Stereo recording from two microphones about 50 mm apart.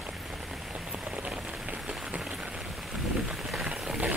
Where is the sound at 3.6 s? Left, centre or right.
Centre.